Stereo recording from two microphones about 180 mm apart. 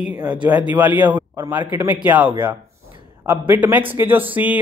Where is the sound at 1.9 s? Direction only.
10° right (ahead or behind).